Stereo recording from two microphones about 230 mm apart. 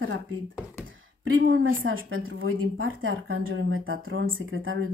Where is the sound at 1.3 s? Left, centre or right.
Right.